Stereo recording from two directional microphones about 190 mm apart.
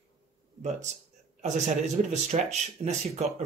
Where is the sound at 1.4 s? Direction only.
40° right (ahead or behind).